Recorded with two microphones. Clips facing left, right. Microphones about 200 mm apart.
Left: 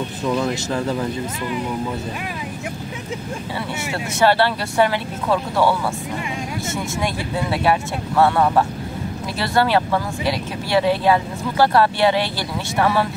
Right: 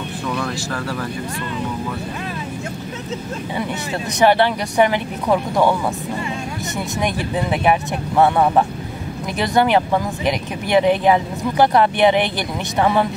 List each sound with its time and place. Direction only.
0.3 s speech: 20° left (ahead or behind)
4.2 s speech: 15° right (ahead or behind)
8.2 s speech: 20° right (ahead or behind)